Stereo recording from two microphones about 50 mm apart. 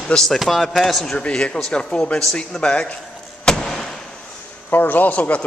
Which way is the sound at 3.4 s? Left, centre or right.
Centre.